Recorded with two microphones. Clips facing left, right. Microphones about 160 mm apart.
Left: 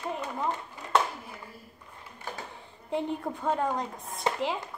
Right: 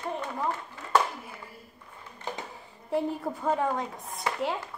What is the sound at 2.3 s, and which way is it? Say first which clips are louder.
Speech: right 3 dB; 20° right (ahead or behind).